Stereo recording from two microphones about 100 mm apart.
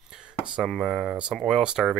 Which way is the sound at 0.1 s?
5° right (ahead or behind).